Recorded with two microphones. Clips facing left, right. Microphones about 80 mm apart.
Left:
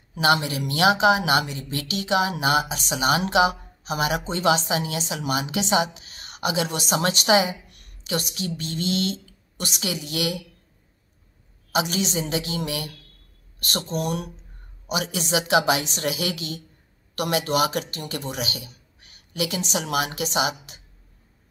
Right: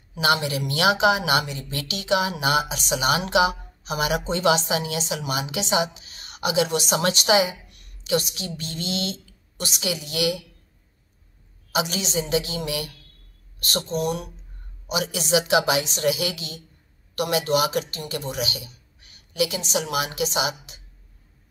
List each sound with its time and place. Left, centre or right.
0.1 s speech: left
11.7 s speech: left
18.3 s a sound: left
19.7 s speech: left